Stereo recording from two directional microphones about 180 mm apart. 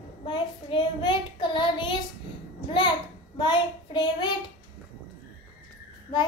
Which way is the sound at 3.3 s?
25° left (ahead or behind).